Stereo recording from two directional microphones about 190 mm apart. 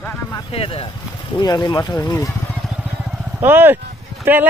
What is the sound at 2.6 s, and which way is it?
Vehicle, 5° right (ahead or behind).